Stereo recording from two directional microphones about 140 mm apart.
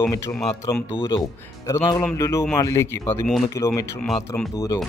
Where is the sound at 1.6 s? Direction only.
20° left (ahead or behind).